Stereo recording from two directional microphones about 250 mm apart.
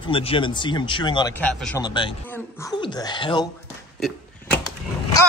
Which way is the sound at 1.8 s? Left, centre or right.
Centre.